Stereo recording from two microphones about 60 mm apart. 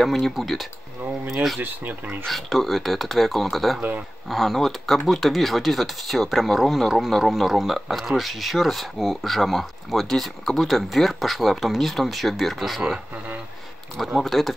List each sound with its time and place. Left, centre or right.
0.0 s speech: centre
1.6 s speech: right
2.2 s speech: centre
13.9 s speech: centre